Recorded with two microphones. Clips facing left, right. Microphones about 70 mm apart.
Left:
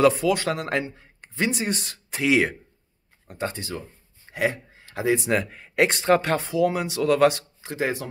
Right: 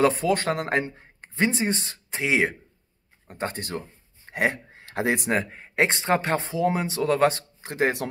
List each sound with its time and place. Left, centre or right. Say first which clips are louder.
0.0 s speech: left 2 dB; right
3.3 s speech: left 1 dB; right
5.3 s speech: left 1 dB; right
7.6 s speech: right 2 dB; right